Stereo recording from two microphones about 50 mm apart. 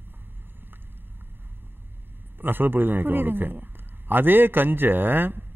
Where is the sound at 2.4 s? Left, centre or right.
Right.